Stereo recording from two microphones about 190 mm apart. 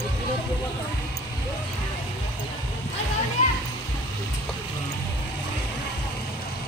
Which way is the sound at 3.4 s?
35° left (ahead or behind).